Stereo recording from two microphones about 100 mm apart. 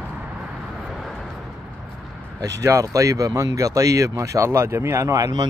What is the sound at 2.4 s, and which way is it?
Speech, 30° right (ahead or behind).